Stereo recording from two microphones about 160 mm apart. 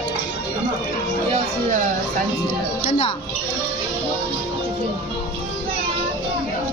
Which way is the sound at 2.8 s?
45° left (ahead or behind).